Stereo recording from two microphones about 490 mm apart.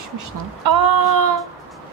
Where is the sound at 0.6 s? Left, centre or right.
Right.